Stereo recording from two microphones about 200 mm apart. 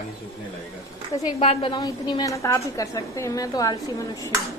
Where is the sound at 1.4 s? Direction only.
30° left (ahead or behind).